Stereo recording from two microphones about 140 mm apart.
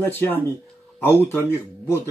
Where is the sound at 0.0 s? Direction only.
15° left (ahead or behind).